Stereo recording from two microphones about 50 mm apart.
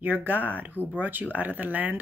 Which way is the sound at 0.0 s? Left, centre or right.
Right.